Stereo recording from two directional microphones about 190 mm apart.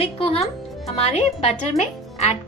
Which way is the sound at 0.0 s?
30° left (ahead or behind).